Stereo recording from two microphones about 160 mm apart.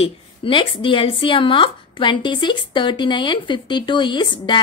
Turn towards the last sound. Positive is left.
turn(degrees=30)  # may be behind; listen again after turning